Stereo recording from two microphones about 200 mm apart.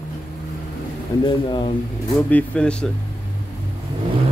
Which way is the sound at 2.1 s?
5° left (ahead or behind).